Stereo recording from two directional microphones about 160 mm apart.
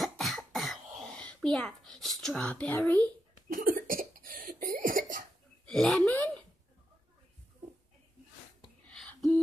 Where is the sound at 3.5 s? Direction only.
60° right (ahead or behind).